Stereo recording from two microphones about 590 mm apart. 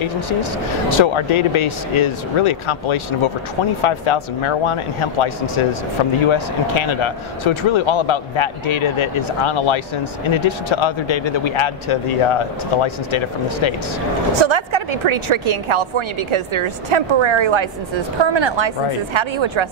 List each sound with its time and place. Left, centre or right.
0.0 s a man's voice: left
14.4 s a woman's voice: right